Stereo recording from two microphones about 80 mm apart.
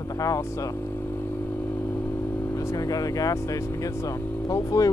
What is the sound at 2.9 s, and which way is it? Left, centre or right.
Speech, left.